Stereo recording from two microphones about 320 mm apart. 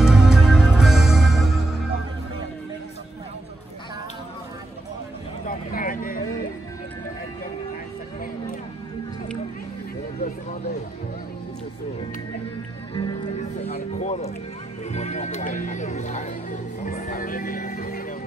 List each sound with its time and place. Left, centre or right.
0.0 s music: centre
5.4 s a sound: left
12.9 s music: centre